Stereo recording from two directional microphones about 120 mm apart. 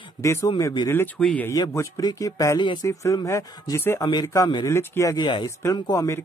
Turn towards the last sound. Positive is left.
turn(degrees=30)  # may be behind; listen again after turning